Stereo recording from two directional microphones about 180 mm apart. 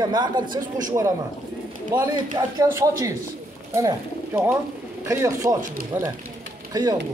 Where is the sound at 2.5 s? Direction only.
20° right (ahead or behind).